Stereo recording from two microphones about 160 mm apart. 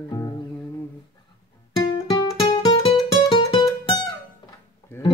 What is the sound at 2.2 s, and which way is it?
Music, 30° left (ahead or behind).